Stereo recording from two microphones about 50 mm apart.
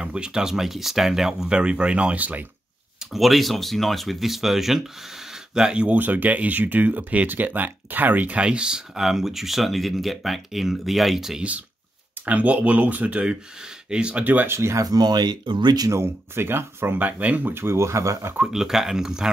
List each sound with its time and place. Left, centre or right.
0.0 s speech: centre
1.5 s speech: centre
3.1 s speech: centre
5.9 s speech: right
8.4 s speech: right
12.3 s speech: right
13.3 s speech: centre
14.2 s speech: right
14.5 s speech: right
15.9 s speech: right
17.0 s speech: right
17.6 s speech: right
18.4 s speech: centre